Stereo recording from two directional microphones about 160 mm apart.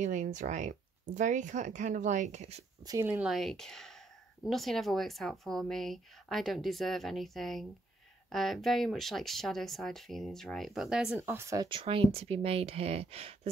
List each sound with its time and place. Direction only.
0.0 s speech: 50° right (ahead or behind)
2.9 s speech: 15° right (ahead or behind)
3.3 s speech: centre (ahead or behind)
11.1 s speech: 15° right (ahead or behind); by 13.5 s 40° right (ahead or behind)